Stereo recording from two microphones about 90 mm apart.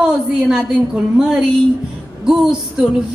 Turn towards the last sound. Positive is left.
turn(degrees=-10)  # may be behind; listen again after turning